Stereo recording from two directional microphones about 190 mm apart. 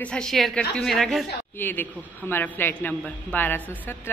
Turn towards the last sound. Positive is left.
turn(degrees=10)  # may be behind; listen again after turning